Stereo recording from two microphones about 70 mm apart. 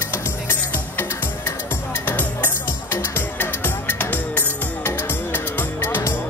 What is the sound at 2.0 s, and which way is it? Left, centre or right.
Music, left.